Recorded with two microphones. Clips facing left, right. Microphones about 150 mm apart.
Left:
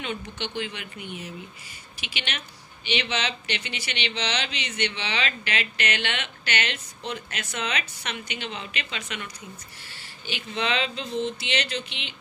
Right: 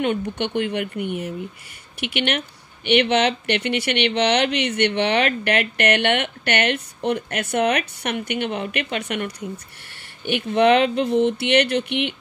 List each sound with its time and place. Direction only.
0.0 s speech: 60° right (ahead or behind)